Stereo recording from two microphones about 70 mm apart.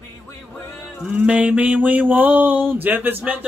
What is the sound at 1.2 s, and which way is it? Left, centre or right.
Music, centre.